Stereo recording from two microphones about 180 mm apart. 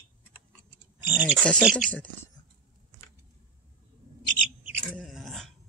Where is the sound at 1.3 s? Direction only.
5° left (ahead or behind).